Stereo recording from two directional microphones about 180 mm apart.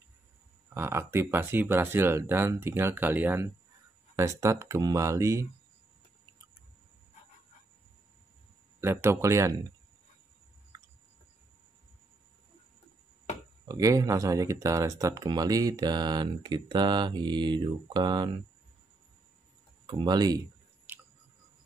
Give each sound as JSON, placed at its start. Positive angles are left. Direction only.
{"t": 0.7, "sound": "speech", "side_deg": -15}
{"t": 8.8, "sound": "speech", "side_deg": -15}
{"t": 13.7, "sound": "speech", "side_deg": -20}
{"t": 19.9, "sound": "speech", "side_deg": -25}
{"t": 20.9, "sound": "a sound", "side_deg": -10}